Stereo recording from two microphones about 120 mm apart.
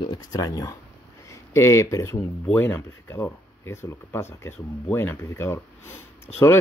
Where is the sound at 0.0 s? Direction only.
35° left (ahead or behind).